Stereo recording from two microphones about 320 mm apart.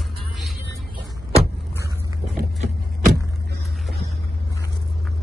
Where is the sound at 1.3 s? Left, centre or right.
Centre.